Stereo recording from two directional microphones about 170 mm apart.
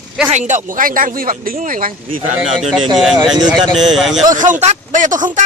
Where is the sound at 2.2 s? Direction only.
30° right (ahead or behind).